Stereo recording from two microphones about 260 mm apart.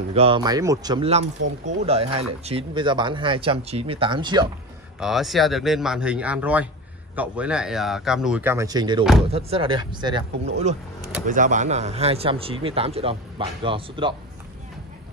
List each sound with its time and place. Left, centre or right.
0.1 s speech: right
5.0 s speech: centre
11.2 s speech: right